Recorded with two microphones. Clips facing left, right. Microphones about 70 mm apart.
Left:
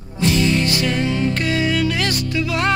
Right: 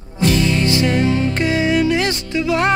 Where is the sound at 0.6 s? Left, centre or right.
Right.